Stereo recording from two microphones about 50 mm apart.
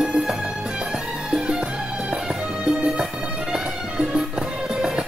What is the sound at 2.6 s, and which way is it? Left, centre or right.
Music, centre.